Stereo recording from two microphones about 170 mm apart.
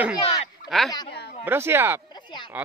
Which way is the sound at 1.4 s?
15° right (ahead or behind).